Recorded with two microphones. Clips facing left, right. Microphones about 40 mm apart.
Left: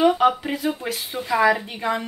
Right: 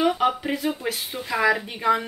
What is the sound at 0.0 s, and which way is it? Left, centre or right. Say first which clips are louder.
A woman's voice: left 4 dB; centre.